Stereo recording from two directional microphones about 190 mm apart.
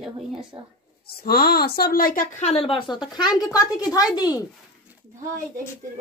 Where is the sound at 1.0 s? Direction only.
55° left (ahead or behind); by 4.4 s 20° left (ahead or behind).